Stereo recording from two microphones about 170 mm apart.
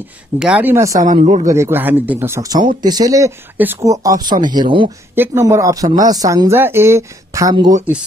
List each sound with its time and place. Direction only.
0.4 s speech: 10° right (ahead or behind)
1.0 s speech: 45° right (ahead or behind)
1.5 s speech: 15° right (ahead or behind)
5.1 s speech: 15° right (ahead or behind)